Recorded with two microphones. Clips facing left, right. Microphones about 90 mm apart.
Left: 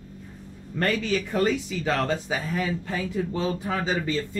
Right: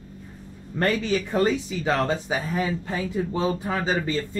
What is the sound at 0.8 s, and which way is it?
Speech, 30° right (ahead or behind).